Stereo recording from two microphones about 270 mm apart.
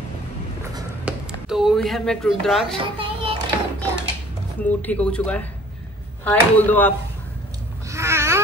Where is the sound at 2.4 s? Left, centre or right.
Centre.